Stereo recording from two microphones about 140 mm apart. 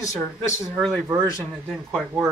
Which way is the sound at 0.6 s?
Centre (ahead or behind).